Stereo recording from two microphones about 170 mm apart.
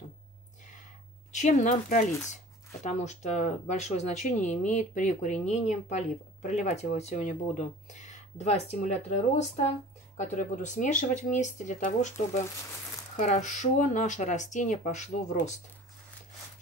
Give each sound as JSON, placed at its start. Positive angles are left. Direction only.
{"t": 1.3, "sound": "speech", "side_deg": 45}
{"t": 13.1, "sound": "speech", "side_deg": 45}